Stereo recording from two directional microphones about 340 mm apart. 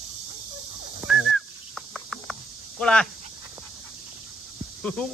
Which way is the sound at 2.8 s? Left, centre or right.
Centre.